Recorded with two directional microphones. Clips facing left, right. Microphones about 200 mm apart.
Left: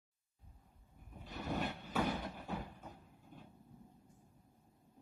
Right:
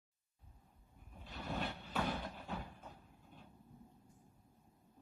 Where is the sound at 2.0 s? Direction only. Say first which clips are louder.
Left 3 dB; 20° left (ahead or behind).